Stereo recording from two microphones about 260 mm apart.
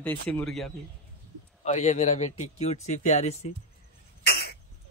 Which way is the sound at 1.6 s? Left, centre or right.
Left.